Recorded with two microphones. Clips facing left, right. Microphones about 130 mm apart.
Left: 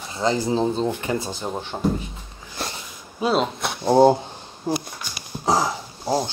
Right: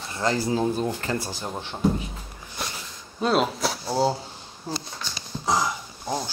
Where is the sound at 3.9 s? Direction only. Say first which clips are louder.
Left 10 dB; 50° left (ahead or behind).